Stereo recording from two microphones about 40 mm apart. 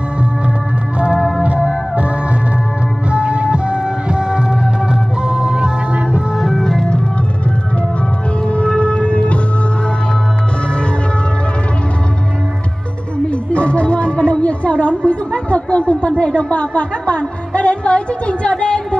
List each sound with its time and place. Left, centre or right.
0.9 s organ: right
1.4 s music: right
3.1 s music: right
6.6 s organ: centre
8.5 s shofar: left
13.3 s music: left